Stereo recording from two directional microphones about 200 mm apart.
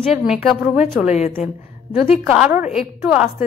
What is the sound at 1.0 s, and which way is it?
Speech, 35° left (ahead or behind).